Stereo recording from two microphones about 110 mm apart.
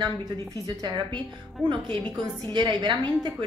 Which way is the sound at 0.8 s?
45° right (ahead or behind).